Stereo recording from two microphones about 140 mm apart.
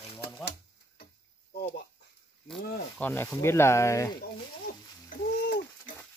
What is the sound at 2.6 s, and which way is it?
Speech, 90° left.